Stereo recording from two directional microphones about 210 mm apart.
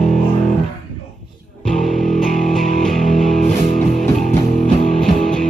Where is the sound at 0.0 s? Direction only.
Centre (ahead or behind).